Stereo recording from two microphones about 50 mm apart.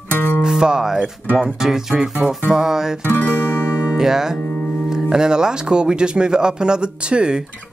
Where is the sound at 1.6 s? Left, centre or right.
Centre.